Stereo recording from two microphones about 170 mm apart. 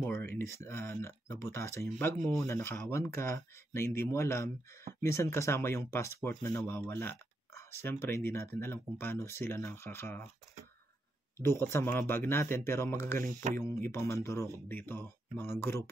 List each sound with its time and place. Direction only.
0.1 s speech: 15° left (ahead or behind)
11.4 s speech: 15° left (ahead or behind)